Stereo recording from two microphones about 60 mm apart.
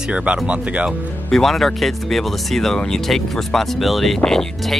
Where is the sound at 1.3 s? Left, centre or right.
Centre.